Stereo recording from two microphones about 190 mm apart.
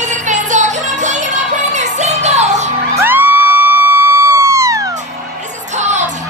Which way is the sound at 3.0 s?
10° right (ahead or behind).